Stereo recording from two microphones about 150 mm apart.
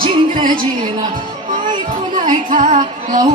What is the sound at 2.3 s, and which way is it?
Music, 55° right (ahead or behind).